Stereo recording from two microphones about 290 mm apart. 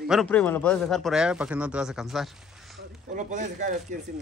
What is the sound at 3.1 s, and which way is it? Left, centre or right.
Speech, right.